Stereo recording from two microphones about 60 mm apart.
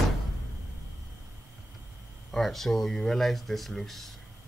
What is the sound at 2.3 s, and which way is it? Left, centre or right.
Speech, centre.